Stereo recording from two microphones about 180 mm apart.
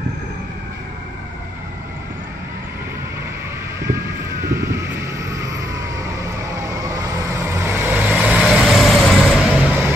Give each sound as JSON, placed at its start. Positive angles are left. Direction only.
{"t": 4.5, "sound": "vehicle", "side_deg": -15}